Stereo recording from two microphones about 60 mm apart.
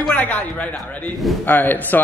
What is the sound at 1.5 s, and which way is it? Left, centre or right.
Speech, left.